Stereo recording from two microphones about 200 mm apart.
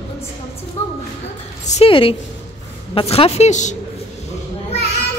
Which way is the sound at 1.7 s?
30° left (ahead or behind).